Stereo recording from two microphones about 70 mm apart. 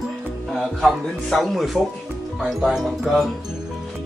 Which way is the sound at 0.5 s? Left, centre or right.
Centre.